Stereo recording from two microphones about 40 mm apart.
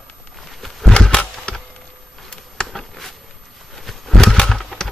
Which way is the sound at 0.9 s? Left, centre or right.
Left.